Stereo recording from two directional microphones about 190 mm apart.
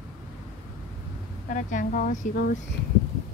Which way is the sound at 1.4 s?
45° left (ahead or behind).